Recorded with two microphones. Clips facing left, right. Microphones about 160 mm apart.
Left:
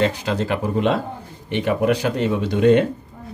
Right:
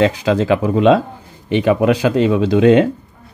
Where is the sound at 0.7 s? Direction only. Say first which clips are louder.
Right 8 dB; 90° right.